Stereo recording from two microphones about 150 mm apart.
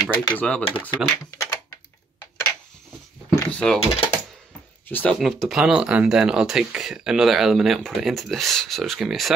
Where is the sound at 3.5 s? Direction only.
5° left (ahead or behind).